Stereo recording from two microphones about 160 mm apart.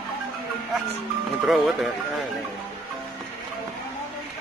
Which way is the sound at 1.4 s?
Centre (ahead or behind).